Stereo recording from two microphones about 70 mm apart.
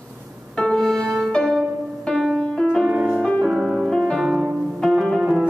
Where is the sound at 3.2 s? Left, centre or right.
Centre.